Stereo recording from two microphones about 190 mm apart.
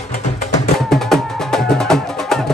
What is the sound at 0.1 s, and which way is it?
Music, 40° left (ahead or behind).